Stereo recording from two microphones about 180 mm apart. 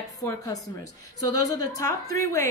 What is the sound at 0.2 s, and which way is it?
A woman's voice, 20° left (ahead or behind).